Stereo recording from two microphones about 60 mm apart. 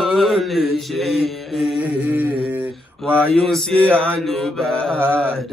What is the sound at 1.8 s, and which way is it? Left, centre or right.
Speech, right.